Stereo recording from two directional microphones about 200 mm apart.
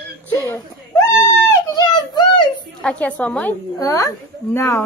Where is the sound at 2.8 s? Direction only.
5° left (ahead or behind).